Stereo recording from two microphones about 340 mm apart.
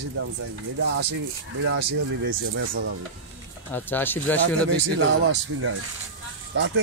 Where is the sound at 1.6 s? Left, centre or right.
Right.